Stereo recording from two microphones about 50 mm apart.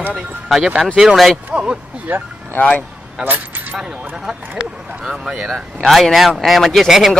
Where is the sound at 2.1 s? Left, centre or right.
Right.